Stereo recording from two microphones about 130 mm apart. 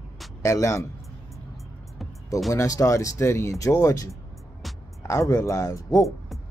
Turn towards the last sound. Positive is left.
turn(degrees=25)  # may be behind; listen again after turning